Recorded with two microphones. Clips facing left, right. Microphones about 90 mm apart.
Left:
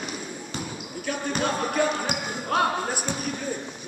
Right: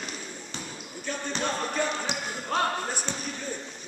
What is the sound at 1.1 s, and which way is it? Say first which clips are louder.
Basketball bounce: left 4 dB; 10° left (ahead or behind).